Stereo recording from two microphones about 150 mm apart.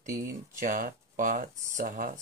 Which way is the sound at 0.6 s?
65° right (ahead or behind).